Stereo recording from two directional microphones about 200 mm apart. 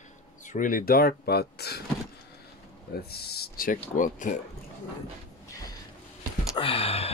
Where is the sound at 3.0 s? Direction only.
50° left (ahead or behind).